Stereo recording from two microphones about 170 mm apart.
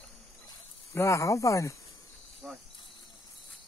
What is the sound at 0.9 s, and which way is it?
Speech, 15° left (ahead or behind).